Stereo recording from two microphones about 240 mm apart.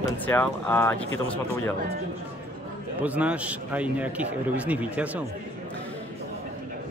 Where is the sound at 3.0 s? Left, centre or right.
Centre.